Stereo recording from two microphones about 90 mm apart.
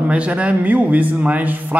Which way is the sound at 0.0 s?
15° right (ahead or behind).